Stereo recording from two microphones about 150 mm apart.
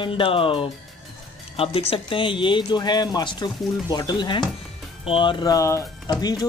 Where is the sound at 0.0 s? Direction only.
35° left (ahead or behind).